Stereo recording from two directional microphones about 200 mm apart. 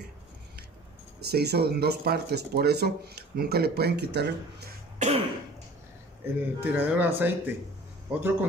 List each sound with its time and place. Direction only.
1.2 s speech: 55° right (ahead or behind)
4.9 s cough: 30° right (ahead or behind)
6.2 s speech: 10° right (ahead or behind)